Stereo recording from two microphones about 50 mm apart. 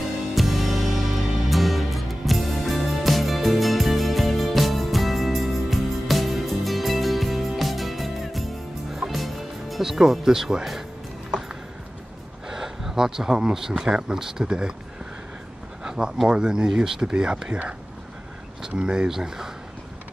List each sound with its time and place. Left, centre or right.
0.3 s music: centre
12.4 s speech: centre
15.8 s a sound: centre
16.3 s speech: centre
18.7 s speech: centre